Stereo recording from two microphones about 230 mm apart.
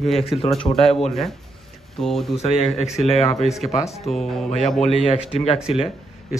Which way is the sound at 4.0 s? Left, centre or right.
Centre.